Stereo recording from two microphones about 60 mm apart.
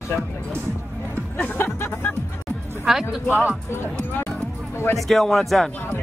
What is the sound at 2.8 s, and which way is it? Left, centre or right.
Speech, centre.